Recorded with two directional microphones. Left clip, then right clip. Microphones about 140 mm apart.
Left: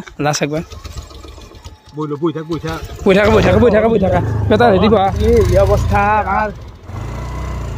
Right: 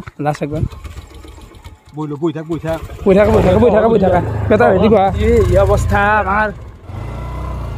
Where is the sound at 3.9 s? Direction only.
15° right (ahead or behind).